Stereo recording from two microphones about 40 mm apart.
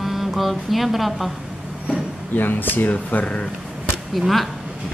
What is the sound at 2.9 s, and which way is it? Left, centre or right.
Speech, left.